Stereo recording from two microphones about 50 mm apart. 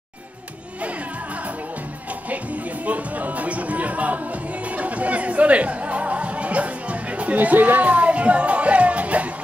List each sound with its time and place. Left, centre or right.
2.2 s music: right